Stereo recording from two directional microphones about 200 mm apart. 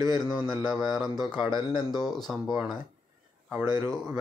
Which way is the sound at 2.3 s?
Centre (ahead or behind).